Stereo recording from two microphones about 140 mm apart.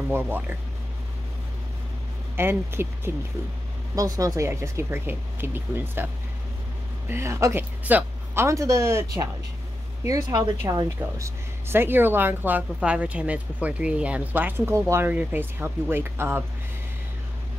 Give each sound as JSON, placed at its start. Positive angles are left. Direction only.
{"t": 0.1, "sound": "speech", "side_deg": -15}
{"t": 2.3, "sound": "speech", "side_deg": -15}
{"t": 3.9, "sound": "speech", "side_deg": -25}
{"t": 7.1, "sound": "speech", "side_deg": -20}